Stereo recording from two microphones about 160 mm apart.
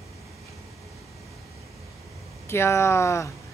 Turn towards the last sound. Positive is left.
turn(degrees=20)  # may be behind; listen again after turning